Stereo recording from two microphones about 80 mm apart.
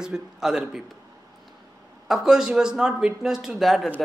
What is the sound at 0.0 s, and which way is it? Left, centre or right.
Speech, centre.